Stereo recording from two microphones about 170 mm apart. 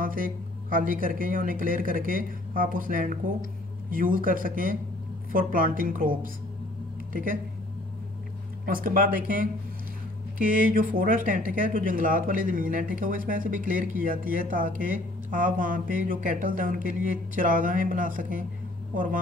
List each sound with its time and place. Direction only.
0.0 s a woman's voice: 55° right (ahead or behind)
8.6 s a woman's voice: 55° right (ahead or behind)